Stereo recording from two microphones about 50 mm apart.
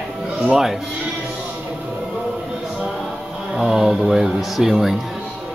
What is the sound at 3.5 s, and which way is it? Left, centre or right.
Speech, centre.